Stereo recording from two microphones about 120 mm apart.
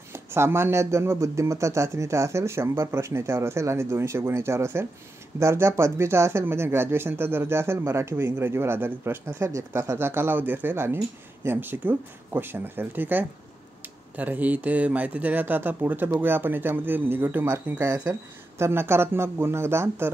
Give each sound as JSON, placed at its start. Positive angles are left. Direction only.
{"t": 0.1, "sound": "speech", "side_deg": -20}
{"t": 17.7, "sound": "speech", "side_deg": -30}